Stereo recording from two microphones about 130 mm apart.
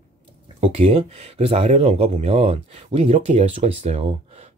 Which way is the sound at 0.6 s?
45° right (ahead or behind).